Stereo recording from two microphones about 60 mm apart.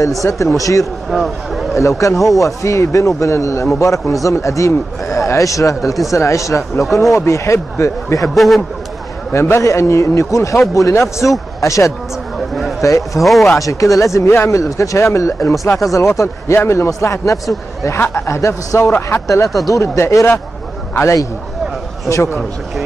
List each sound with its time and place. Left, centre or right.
0.2 s speech: left
1.1 s speech: centre
1.8 s speech: left
8.4 s speech: centre
9.3 s speech: left
13.2 s speech: centre
13.6 s speech: left
17.8 s a man's voice: left
18.4 s a man's voice: left
19.2 s a man's voice: left